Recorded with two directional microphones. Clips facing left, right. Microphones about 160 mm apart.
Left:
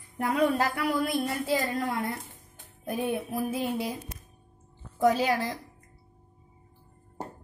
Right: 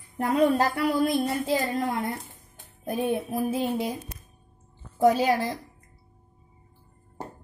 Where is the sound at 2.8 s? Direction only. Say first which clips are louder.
Right 3 dB; 30° right (ahead or behind).